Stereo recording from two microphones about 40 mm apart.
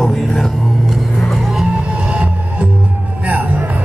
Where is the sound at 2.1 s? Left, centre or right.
Right.